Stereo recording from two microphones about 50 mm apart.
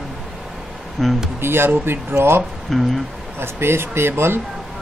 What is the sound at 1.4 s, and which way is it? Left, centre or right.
Speech, right.